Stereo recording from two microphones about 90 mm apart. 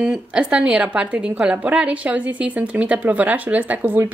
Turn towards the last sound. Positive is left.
turn(degrees=-20)  # may be behind; listen again after turning